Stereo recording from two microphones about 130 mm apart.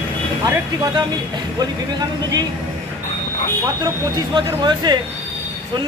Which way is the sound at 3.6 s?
30° right (ahead or behind).